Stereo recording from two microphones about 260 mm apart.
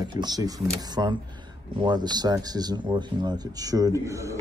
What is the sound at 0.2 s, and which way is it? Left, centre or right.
Speech, centre.